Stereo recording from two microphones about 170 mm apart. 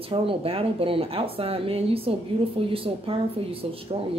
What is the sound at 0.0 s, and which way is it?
A woman's voice, 30° right (ahead or behind).